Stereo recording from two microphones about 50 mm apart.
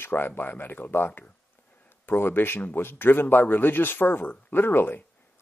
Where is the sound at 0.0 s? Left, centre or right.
Left.